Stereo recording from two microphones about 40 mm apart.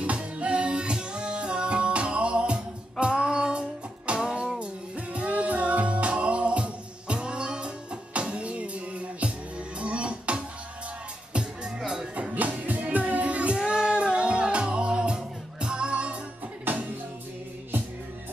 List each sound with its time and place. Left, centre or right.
0.0 s music: right
12.4 s music: right
13.6 s music: centre
16.7 s music: right